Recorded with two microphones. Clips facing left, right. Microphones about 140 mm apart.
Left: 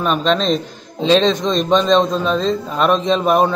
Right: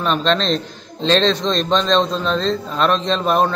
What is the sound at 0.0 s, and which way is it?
Speech, 10° left (ahead or behind).